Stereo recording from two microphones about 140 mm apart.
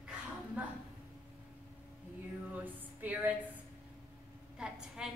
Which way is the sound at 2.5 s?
10° right (ahead or behind).